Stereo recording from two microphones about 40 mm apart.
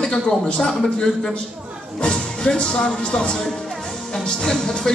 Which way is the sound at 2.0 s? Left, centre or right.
Left.